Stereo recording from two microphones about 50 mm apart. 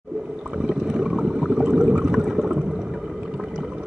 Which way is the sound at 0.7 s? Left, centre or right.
Centre.